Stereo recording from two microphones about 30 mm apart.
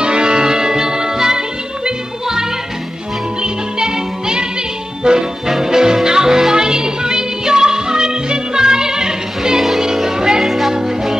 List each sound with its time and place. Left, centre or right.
0.0 s music: right
3.4 s music: right
10.4 s music: centre
10.7 s music: centre